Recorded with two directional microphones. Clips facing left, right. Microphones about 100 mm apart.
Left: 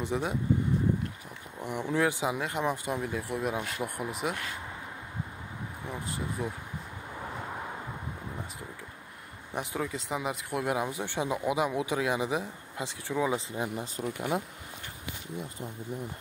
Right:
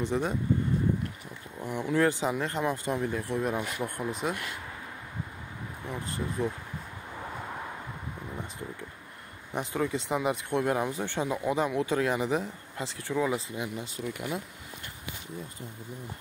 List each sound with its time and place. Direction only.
0.0 s speech: 10° left (ahead or behind)
1.6 s speech: 15° left (ahead or behind)
5.9 s speech: 10° left (ahead or behind)
7.2 s vehicle: 5° left (ahead or behind)
9.5 s speech: 5° left (ahead or behind)
13.5 s speech: 30° left (ahead or behind)